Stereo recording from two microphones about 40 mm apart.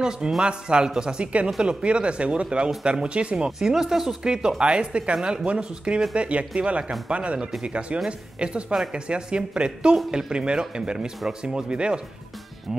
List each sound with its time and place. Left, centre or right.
0.4 s speech: right
3.5 s speech: centre